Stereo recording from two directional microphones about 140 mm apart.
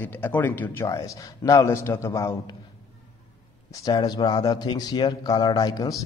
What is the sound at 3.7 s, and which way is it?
A man's voice, 25° left (ahead or behind).